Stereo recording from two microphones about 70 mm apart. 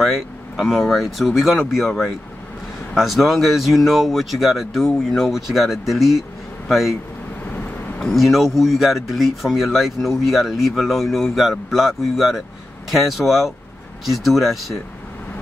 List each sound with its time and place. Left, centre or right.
0.0 s speech: centre
7.5 s vehicle: left
8.0 s speech: centre